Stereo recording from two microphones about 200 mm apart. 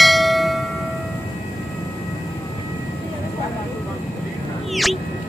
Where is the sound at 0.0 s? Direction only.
Centre (ahead or behind).